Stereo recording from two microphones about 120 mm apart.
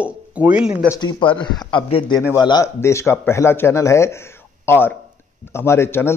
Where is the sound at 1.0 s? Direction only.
40° left (ahead or behind).